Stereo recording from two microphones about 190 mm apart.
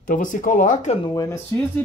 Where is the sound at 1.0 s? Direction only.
15° left (ahead or behind).